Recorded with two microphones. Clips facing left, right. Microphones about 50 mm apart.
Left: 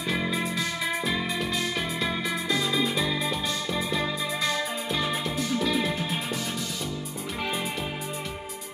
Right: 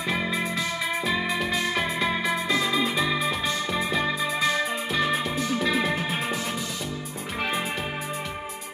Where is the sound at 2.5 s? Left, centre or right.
Centre.